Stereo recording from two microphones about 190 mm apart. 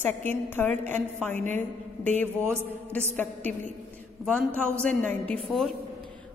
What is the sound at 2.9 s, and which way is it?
Speech, 10° left (ahead or behind).